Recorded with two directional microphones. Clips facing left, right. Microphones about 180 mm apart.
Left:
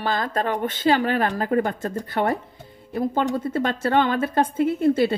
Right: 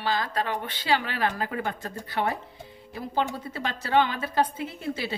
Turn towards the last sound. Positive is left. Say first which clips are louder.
# left 12 dB
turn(degrees=50)  # may be behind; listen again after turning